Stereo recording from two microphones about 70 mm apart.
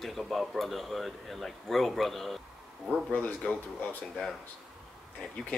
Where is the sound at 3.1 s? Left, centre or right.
Left.